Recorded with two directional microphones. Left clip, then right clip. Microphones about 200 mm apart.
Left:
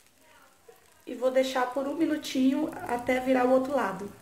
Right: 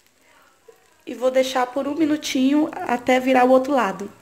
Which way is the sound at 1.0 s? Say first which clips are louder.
Right 6 dB; 45° right (ahead or behind).